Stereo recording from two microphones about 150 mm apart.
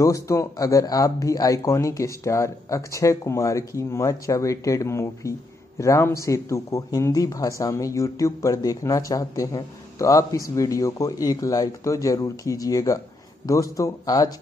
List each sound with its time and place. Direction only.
0.0 s speech: 20° left (ahead or behind)